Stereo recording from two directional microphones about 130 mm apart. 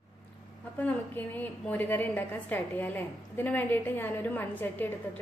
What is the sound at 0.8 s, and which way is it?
A woman's voice, 10° left (ahead or behind).